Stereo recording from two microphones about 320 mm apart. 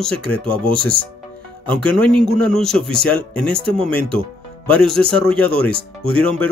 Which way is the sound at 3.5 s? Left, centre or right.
Centre.